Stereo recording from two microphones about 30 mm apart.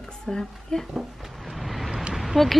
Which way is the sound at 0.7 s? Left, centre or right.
Left.